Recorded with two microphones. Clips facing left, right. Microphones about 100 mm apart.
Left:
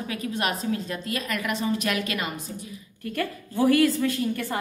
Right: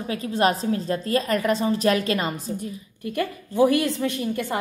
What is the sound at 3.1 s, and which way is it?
Speech, 15° right (ahead or behind).